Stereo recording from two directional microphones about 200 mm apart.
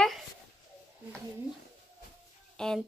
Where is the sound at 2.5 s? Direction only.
5° left (ahead or behind).